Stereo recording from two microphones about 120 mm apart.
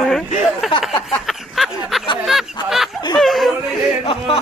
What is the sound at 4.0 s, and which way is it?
Speech, 55° left (ahead or behind).